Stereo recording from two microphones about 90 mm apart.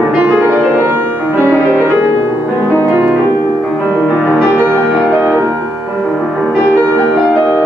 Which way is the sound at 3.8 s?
5° left (ahead or behind).